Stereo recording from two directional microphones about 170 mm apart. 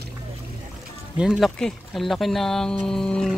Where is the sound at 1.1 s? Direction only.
5° right (ahead or behind).